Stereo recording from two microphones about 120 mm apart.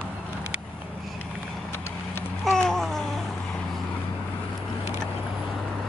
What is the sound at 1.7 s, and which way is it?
Vehicle, 20° left (ahead or behind).